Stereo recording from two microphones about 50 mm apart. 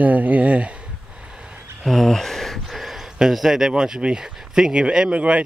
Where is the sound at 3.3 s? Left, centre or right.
Centre.